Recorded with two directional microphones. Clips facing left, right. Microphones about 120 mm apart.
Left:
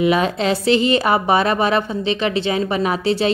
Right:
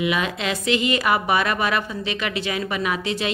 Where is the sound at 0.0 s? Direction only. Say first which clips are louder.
Left 7 dB; 35° left (ahead or behind).